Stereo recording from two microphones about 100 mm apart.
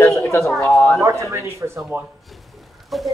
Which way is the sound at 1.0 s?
30° right (ahead or behind).